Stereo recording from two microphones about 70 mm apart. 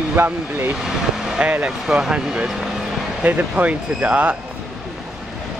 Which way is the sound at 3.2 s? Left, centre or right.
Right.